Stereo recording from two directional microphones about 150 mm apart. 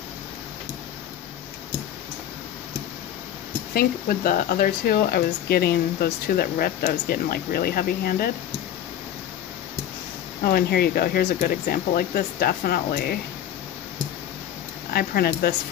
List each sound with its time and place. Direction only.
3.7 s speech: 75° left (ahead or behind); by 8.3 s 90° left
10.4 s speech: 90° left
14.9 s speech: 90° left